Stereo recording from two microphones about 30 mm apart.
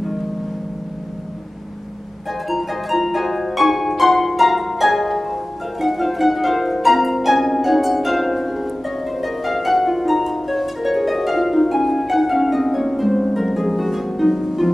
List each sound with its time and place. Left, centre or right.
2.5 s harp: centre
14.4 s music: centre